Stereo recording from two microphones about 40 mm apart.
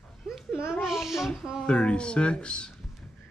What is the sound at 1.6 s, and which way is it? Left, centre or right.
Speech, left.